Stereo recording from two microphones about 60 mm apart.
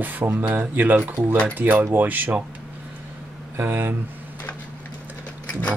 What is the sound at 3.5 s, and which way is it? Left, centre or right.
Speech, right.